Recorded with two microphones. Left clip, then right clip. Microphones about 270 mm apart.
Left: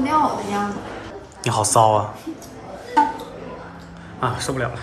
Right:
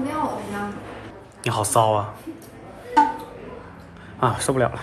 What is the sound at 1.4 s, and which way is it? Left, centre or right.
Speech, centre.